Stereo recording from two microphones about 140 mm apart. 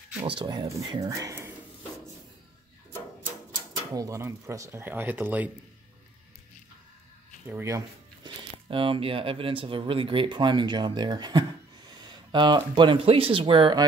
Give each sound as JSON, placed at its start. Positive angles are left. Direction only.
{"t": 0.4, "sound": "speech", "side_deg": -35}
{"t": 0.7, "sound": "speech", "side_deg": -20}
{"t": 3.9, "sound": "speech", "side_deg": -20}
{"t": 7.4, "sound": "speech", "side_deg": -20}
{"t": 8.6, "sound": "speech", "side_deg": -40}